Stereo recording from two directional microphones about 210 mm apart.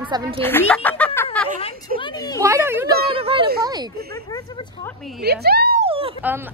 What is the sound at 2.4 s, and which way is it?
Speech, 10° right (ahead or behind).